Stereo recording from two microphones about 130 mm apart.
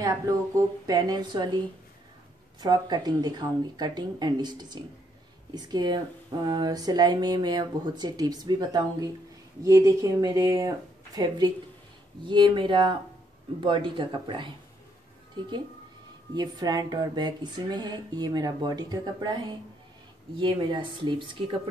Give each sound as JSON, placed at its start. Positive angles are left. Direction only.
{"t": 0.0, "sound": "a woman's voice", "side_deg": -25}
{"t": 2.6, "sound": "a woman's voice", "side_deg": -30}
{"t": 16.3, "sound": "speech", "side_deg": -30}
{"t": 20.3, "sound": "speech", "side_deg": -40}